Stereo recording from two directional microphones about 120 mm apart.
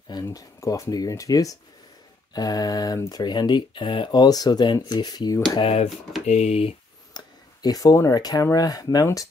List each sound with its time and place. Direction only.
0.1 s speech: 30° left (ahead or behind)
5.6 s speech: 60° left (ahead or behind)
7.2 s speech: 35° left (ahead or behind)